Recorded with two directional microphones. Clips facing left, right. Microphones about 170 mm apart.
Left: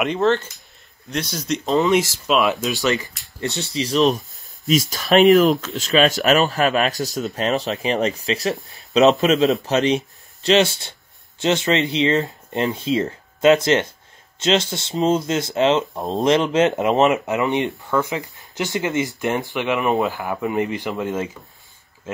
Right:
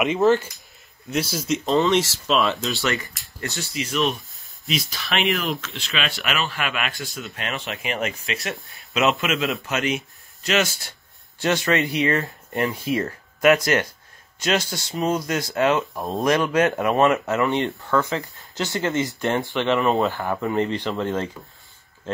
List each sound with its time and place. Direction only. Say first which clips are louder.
0.0 s speech: right 1 dB; 5° right (ahead or behind)
2.0 s speech: left 2 dB; 10° left (ahead or behind)
2.3 s speech: left 3 dB; centre (ahead or behind)
2.6 s speech: left 4 dB; 15° left (ahead or behind)
3.7 s speech: left 6 dB; 35° left (ahead or behind); by 20.0 s 15° left (ahead or behind)
20.0 s speech: left 1 dB; 5° left (ahead or behind)